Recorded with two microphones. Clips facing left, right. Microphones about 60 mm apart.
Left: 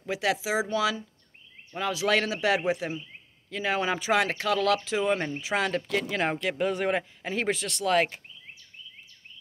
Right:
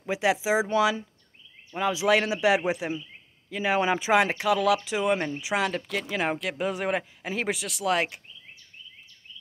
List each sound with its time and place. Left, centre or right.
0.0 s speech: centre
1.7 s speech: centre